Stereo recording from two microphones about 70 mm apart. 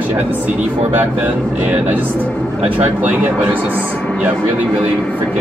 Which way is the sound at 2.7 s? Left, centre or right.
Right.